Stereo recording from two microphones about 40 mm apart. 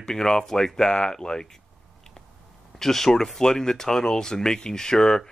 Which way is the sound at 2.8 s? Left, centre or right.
Centre.